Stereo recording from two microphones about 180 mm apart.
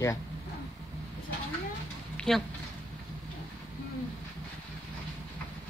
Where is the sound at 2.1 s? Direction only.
5° left (ahead or behind).